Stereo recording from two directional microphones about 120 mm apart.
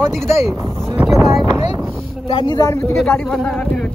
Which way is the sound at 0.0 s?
5° left (ahead or behind).